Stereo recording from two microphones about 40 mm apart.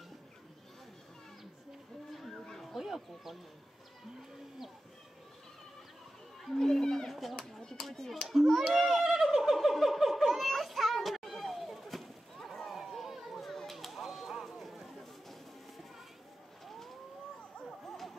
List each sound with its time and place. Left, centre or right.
2.6 s a sound: centre
6.6 s a sound: centre
7.1 s speech: centre
7.3 s speech: centre
8.3 s a child's voice: centre
8.7 s cat: centre
10.5 s children playing: centre
12.8 s a sound: centre
17.6 s music: centre